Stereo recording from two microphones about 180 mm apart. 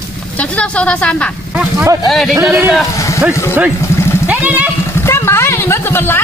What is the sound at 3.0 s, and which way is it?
Vehicle, 15° left (ahead or behind).